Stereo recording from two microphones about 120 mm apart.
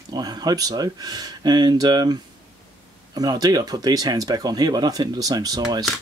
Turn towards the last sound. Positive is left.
turn(degrees=-35)  # may be behind; listen again after turning